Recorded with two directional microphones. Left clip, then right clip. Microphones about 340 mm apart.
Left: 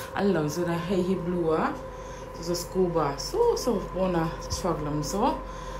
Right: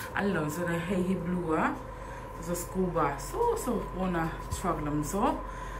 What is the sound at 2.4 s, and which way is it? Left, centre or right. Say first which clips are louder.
A woman's voice: left 6 dB; centre.